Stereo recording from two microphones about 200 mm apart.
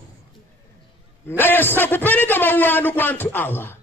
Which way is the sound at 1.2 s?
10° left (ahead or behind).